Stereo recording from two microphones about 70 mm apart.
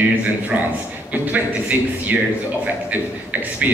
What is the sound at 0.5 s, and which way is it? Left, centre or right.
A man's voice, right.